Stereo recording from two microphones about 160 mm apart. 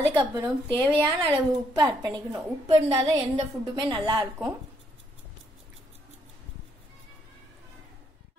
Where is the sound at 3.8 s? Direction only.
25° right (ahead or behind).